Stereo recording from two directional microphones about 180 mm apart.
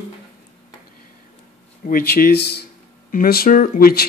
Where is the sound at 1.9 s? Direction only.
55° left (ahead or behind).